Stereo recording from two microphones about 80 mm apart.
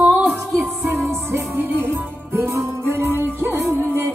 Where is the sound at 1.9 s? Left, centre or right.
Right.